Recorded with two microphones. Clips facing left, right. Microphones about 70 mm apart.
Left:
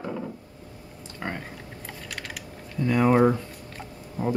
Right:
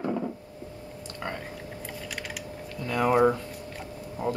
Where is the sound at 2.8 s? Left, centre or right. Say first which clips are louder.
Left 4 dB; left.